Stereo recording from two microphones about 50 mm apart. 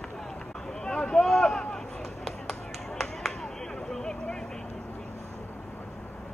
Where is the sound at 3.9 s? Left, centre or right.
Centre.